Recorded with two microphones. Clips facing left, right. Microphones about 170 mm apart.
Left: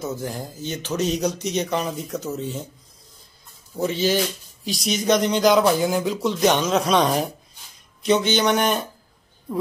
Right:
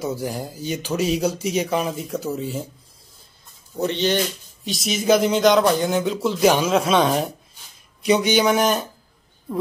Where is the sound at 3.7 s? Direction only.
Centre (ahead or behind).